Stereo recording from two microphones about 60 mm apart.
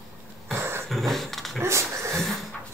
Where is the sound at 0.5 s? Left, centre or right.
Right.